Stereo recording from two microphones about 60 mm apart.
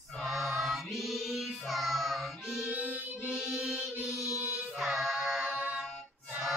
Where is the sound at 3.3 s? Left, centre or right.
Centre.